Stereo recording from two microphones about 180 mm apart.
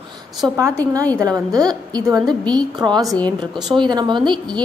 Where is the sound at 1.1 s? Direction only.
20° right (ahead or behind).